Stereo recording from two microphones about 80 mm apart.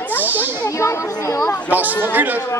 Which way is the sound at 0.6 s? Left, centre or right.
Left.